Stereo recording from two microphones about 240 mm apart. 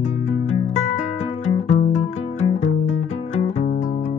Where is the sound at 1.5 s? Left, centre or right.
Left.